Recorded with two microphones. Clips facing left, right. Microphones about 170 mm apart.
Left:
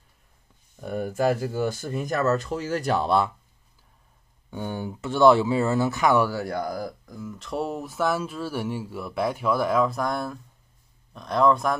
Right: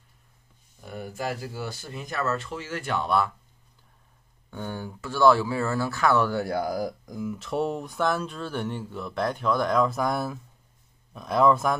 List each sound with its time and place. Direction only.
0.7 s speech: 50° left (ahead or behind); by 3.3 s 25° left (ahead or behind)
4.5 s speech: 15° left (ahead or behind)
6.3 s speech: 5° right (ahead or behind)
7.3 s speech: centre (ahead or behind)